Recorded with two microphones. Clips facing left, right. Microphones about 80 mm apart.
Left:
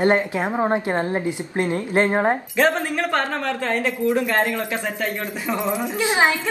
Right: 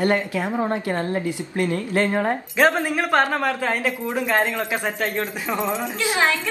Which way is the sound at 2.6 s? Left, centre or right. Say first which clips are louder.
Right 3 dB; centre.